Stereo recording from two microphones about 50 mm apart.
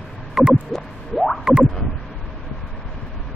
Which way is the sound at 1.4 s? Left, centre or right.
Centre.